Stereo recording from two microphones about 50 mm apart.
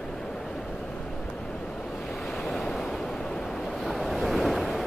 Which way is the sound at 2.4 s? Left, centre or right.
Centre.